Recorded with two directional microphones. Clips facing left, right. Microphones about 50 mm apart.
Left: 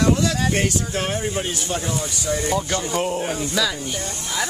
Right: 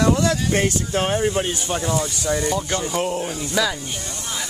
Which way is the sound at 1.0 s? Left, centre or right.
Centre.